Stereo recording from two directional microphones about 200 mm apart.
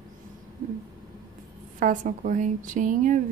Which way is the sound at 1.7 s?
40° right (ahead or behind).